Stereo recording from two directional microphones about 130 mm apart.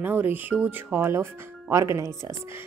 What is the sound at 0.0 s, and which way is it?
A woman's voice, 15° right (ahead or behind).